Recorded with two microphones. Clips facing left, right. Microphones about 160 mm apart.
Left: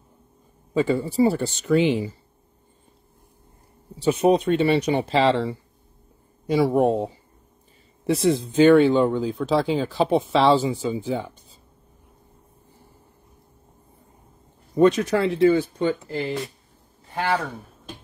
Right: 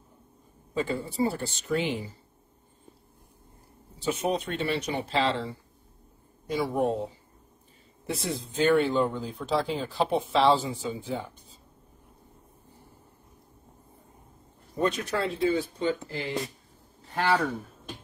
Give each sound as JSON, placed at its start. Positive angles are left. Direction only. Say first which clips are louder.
{"t": 0.7, "sound": "speech", "louder": "left 8 dB", "side_deg": 85}
{"t": 4.0, "sound": "speech", "louder": "left 10 dB", "side_deg": 75}
{"t": 8.1, "sound": "speech", "louder": "left 12 dB", "side_deg": 90}
{"t": 14.8, "sound": "speech", "louder": "left 10 dB", "side_deg": 90}